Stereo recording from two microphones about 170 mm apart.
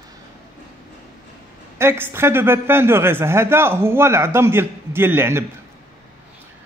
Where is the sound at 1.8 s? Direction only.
15° right (ahead or behind).